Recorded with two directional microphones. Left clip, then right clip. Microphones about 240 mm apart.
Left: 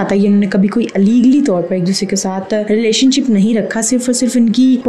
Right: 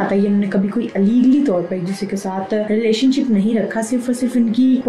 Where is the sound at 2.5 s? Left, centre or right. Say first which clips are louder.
Left 4 dB; left.